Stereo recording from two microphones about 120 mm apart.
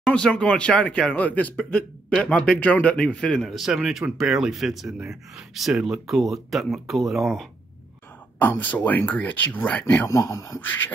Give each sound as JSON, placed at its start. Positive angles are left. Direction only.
{"t": 0.1, "sound": "speech", "side_deg": 10}
{"t": 8.4, "sound": "speech", "side_deg": 15}
{"t": 10.0, "sound": "a man's voice", "side_deg": 25}